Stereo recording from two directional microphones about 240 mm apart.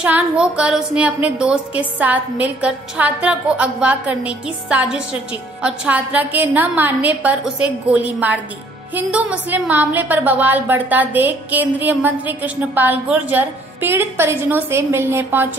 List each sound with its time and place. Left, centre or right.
0.0 s a woman's voice: centre